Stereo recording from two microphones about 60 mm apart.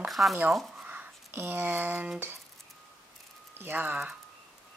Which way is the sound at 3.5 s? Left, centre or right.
Right.